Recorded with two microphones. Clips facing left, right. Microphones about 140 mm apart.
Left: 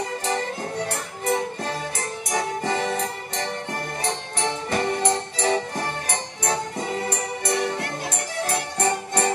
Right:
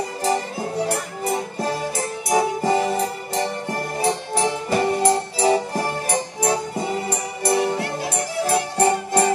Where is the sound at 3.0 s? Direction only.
30° right (ahead or behind).